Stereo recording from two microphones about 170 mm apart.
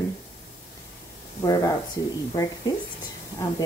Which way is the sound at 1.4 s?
20° left (ahead or behind).